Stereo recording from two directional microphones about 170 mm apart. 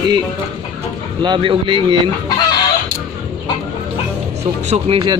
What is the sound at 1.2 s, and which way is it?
Speech, 30° right (ahead or behind).